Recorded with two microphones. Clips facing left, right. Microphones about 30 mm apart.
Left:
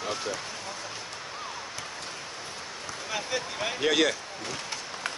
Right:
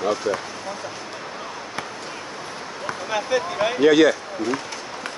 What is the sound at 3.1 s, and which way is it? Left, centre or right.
Speech, centre.